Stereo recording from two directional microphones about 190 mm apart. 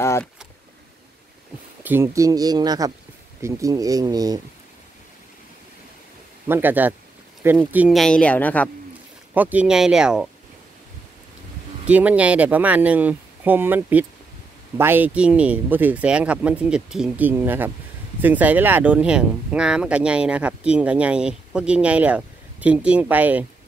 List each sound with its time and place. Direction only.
1.8 s speech: 10° right (ahead or behind)
6.4 s speech: 10° right (ahead or behind); by 8.6 s 10° left (ahead or behind)
9.3 s speech: 10° right (ahead or behind)
11.8 s speech: 5° right (ahead or behind)